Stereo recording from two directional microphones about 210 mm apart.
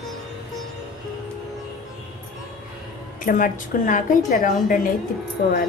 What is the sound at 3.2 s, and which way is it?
A woman's voice, 40° left (ahead or behind).